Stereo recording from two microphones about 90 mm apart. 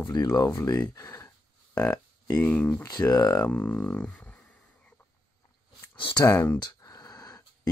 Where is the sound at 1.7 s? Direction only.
40° left (ahead or behind).